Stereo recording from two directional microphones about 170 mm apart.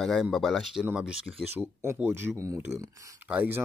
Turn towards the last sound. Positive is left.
turn(degrees=-10)  # may be behind; listen again after turning